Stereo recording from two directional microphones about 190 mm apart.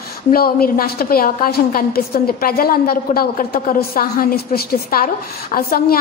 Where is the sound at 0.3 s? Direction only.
50° left (ahead or behind).